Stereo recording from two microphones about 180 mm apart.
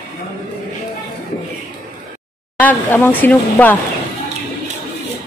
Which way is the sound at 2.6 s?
10° left (ahead or behind).